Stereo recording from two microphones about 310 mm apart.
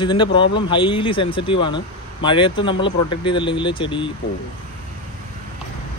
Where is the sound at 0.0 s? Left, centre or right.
Centre.